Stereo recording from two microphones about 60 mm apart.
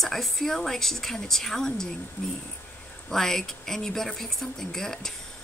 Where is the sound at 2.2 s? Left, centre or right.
Left.